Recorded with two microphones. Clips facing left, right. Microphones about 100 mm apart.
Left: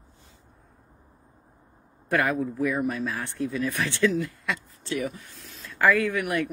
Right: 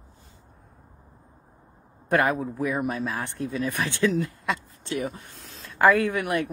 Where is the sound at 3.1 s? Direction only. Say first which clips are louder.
Even; 45° right (ahead or behind).